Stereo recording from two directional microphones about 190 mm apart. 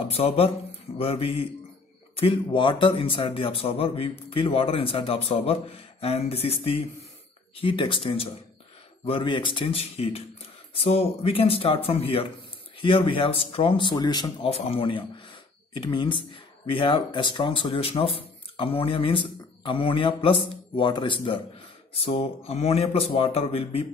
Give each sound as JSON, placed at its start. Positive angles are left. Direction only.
{"t": 0.1, "sound": "speech", "side_deg": 30}